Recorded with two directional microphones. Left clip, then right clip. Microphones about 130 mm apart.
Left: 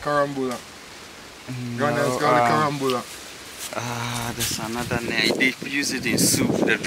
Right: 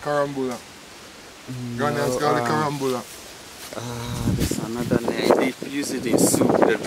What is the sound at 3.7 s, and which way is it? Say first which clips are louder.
Speech: left 4 dB; 25° left (ahead or behind).